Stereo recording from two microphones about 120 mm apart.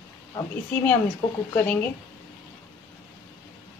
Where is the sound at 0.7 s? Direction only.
10° left (ahead or behind).